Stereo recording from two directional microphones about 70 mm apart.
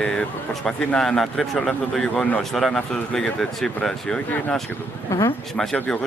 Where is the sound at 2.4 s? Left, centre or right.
Centre.